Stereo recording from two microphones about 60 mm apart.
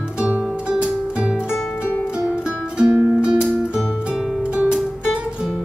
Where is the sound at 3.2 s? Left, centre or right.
Centre.